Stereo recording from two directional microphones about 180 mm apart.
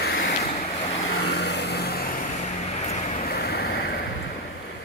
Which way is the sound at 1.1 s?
70° left (ahead or behind).